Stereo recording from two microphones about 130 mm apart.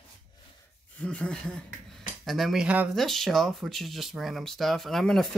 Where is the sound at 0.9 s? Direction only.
10° left (ahead or behind); by 2.9 s 10° right (ahead or behind).